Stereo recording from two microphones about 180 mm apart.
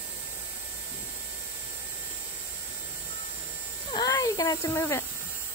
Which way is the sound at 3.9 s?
20° left (ahead or behind).